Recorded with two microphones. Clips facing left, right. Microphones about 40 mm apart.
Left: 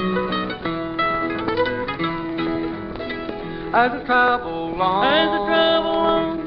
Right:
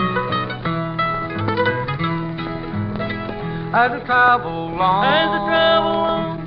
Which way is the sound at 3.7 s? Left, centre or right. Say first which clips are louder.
Right 1 dB; centre.